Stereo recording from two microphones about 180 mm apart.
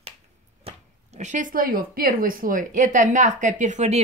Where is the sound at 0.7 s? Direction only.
40° right (ahead or behind).